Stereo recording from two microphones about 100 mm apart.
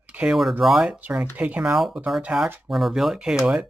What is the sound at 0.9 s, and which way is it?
Speech, 15° right (ahead or behind).